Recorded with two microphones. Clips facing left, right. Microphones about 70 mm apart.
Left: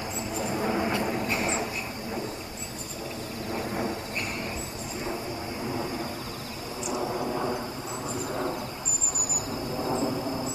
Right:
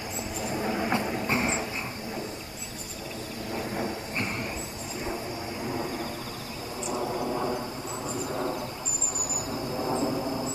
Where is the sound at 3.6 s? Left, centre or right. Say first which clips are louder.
Left 1 dB; centre.